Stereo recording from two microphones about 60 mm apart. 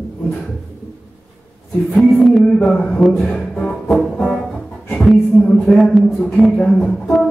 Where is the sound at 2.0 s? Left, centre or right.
Centre.